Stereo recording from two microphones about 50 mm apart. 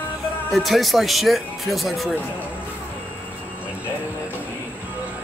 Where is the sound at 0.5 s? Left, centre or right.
Centre.